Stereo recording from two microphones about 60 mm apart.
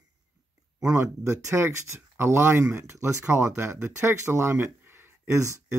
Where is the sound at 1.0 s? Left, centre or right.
Right.